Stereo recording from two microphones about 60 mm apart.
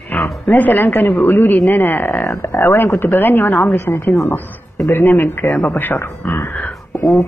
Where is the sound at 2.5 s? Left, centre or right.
Left.